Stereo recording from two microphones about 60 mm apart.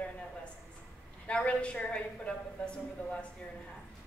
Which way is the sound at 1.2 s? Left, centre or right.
Centre.